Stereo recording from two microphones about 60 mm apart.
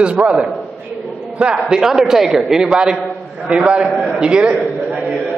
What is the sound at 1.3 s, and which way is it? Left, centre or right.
A man's voice, centre.